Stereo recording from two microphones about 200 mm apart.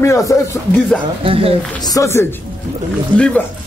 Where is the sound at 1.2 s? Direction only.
30° right (ahead or behind).